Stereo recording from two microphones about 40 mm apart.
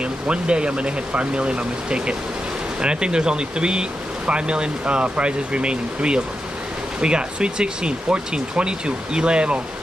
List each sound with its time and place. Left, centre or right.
0.0 s speech: right